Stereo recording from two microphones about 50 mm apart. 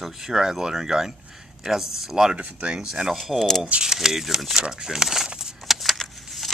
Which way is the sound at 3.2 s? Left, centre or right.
Centre.